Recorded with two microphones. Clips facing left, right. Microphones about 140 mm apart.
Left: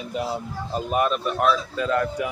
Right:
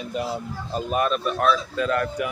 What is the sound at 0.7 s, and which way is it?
Speech, 15° left (ahead or behind).